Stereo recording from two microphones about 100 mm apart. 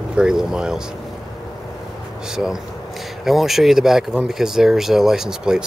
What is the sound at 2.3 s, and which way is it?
Speech, 5° right (ahead or behind).